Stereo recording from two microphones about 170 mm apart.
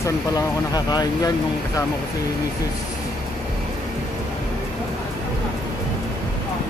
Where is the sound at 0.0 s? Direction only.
20° left (ahead or behind).